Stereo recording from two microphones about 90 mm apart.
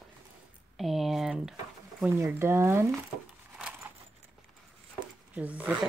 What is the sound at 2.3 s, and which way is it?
Speech, 30° right (ahead or behind).